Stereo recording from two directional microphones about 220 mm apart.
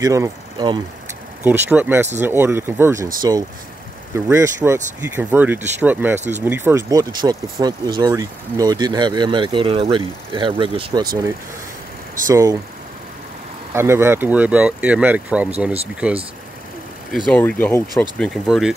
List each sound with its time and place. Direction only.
0.0 s speech: 15° right (ahead or behind)
12.3 s speech: 15° right (ahead or behind)
13.7 s speech: 10° right (ahead or behind)
17.3 s speech: 5° left (ahead or behind)